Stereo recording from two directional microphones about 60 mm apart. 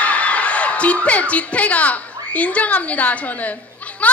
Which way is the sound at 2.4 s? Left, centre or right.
Left.